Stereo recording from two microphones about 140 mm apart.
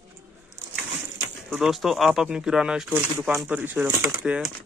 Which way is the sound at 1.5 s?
Centre (ahead or behind).